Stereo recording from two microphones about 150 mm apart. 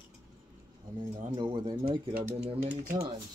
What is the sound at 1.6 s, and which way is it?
Speech, 30° right (ahead or behind).